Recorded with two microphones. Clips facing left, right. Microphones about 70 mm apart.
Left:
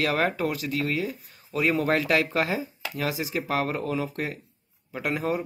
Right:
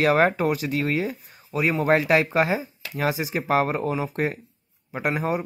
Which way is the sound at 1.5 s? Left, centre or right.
Centre.